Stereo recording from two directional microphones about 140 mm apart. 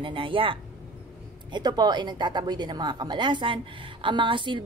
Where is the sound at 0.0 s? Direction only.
40° right (ahead or behind).